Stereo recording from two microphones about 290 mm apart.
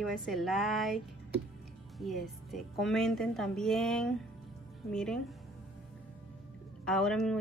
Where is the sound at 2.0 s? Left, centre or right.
Centre.